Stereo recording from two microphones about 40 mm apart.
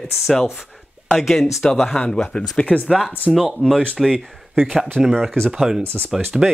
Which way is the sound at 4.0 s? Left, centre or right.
Centre.